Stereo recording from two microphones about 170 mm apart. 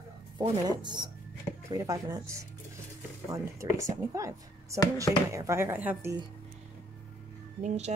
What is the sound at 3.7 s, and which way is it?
Speech, 20° right (ahead or behind).